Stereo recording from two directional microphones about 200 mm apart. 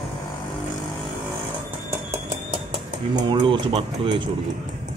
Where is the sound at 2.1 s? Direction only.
30° right (ahead or behind).